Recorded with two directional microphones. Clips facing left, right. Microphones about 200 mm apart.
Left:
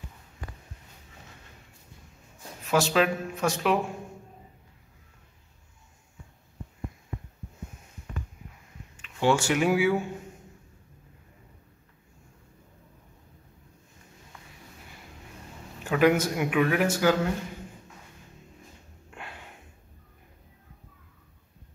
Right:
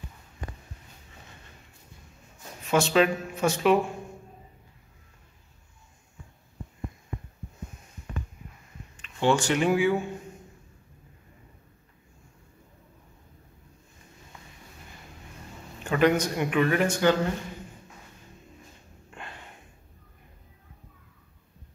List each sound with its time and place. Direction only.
2.6 s a man's voice: centre (ahead or behind)
8.9 s speech: 10° left (ahead or behind)
15.8 s a man's voice: 5° left (ahead or behind)
19.0 s a sound: 5° left (ahead or behind)